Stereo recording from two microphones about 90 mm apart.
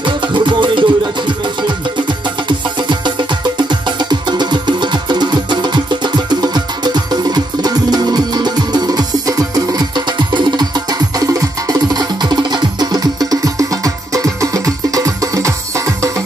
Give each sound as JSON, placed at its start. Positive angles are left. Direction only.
{"t": 0.0, "sound": "music", "side_deg": -65}
{"t": 4.1, "sound": "music", "side_deg": -55}